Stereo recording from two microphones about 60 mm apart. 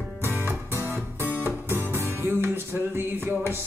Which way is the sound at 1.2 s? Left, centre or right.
Right.